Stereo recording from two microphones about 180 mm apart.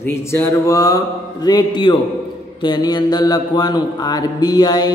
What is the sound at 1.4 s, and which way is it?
Mantra, 25° left (ahead or behind).